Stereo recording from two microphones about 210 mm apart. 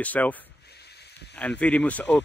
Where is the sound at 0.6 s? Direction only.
50° left (ahead or behind).